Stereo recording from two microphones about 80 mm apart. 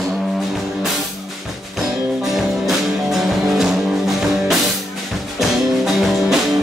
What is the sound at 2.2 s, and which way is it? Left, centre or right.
Music, centre.